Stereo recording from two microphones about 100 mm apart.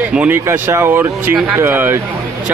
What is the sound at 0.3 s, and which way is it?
Speech, 25° right (ahead or behind).